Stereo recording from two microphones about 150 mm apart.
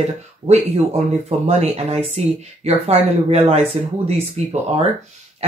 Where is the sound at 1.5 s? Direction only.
45° right (ahead or behind).